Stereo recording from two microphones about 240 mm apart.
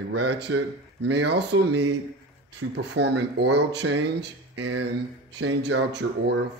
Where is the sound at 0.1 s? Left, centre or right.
Right.